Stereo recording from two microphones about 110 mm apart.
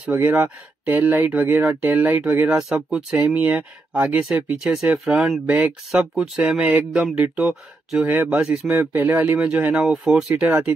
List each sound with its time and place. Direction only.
0.0 s speech: 10° right (ahead or behind)
2.5 s speech: 5° right (ahead or behind)
3.4 s speech: 15° right (ahead or behind)
8.6 s speech: 15° right (ahead or behind)